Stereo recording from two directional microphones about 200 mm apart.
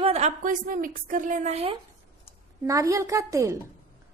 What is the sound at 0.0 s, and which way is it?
A woman's voice, 35° right (ahead or behind).